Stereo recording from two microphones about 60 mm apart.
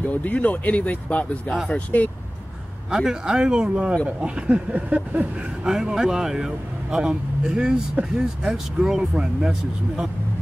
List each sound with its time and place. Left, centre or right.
0.0 s speech: left
2.9 s a man's voice: centre
4.2 s a sound: centre
5.7 s a man's voice: centre